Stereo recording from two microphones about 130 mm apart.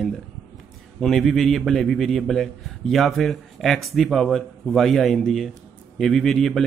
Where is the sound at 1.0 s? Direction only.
Centre (ahead or behind).